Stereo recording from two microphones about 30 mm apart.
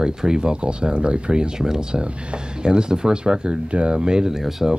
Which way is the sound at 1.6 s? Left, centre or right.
Right.